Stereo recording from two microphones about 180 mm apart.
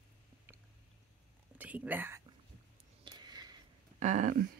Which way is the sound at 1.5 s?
10° right (ahead or behind).